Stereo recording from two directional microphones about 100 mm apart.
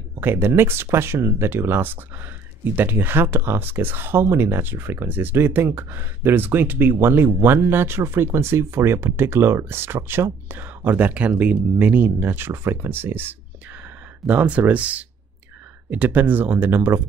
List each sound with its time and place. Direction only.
0.2 s speech: 20° right (ahead or behind)